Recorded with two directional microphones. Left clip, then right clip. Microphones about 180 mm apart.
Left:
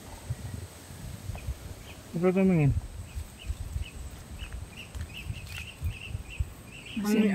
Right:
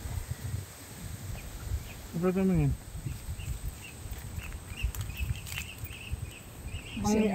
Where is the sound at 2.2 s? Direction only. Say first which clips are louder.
Left 4 dB; 30° left (ahead or behind).